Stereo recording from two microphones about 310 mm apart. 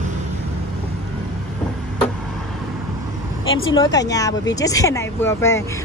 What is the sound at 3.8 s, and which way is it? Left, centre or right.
Speech, centre.